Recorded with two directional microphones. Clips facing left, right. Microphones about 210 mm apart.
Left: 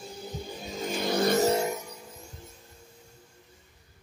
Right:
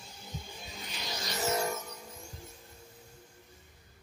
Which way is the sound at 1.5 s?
15° left (ahead or behind).